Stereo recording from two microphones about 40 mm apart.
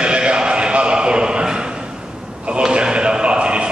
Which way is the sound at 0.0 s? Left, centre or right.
Right.